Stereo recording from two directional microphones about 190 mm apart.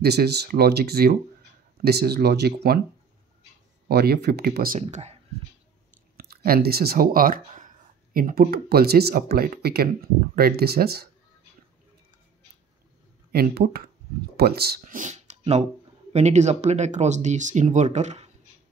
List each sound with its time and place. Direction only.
0.0 s speech: 60° right (ahead or behind)
3.9 s speech: 55° right (ahead or behind); by 5.2 s 35° right (ahead or behind)
6.1 s speech: 50° right (ahead or behind)
13.3 s speech: 55° right (ahead or behind); by 18.3 s 35° right (ahead or behind)